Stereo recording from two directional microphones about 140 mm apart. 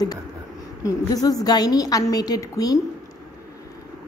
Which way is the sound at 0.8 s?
25° left (ahead or behind).